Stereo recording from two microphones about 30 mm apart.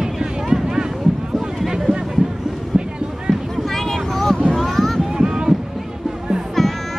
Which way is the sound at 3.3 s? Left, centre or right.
Centre.